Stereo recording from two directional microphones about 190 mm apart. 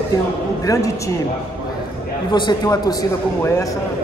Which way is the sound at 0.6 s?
20° left (ahead or behind).